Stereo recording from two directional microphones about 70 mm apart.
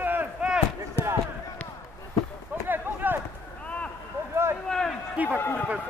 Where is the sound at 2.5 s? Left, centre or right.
Right.